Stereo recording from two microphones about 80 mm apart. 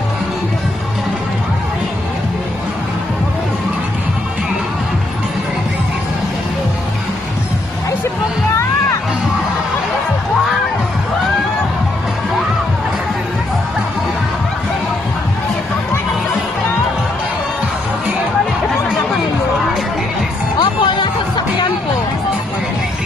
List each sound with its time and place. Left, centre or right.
20.5 s music: left